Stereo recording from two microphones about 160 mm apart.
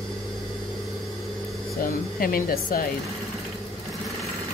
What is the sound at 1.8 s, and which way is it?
Speech, 65° left (ahead or behind).